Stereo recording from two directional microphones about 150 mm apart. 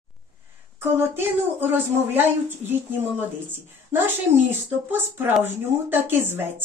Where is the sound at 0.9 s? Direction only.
15° right (ahead or behind).